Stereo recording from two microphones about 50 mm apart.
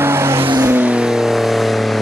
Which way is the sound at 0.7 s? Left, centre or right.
Right.